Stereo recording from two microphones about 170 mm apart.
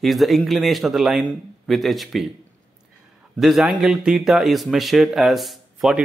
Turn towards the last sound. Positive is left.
turn(degrees=0)  # may be behind; listen again after turning